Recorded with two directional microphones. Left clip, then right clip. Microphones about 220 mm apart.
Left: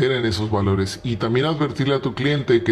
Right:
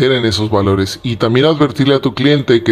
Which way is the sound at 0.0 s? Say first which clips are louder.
Right 7 dB; 35° right (ahead or behind).